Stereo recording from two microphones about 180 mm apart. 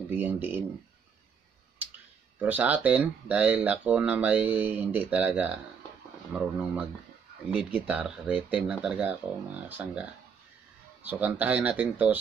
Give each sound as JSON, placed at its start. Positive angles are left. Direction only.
{"t": 0.1, "sound": "speech", "side_deg": -10}
{"t": 2.3, "sound": "speech", "side_deg": -10}